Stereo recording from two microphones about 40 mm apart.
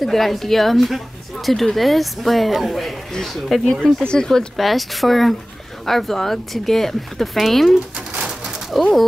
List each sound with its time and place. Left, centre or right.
0.0 s speech: centre
3.1 s speech: centre
4.6 s speech: centre
8.3 s bird: centre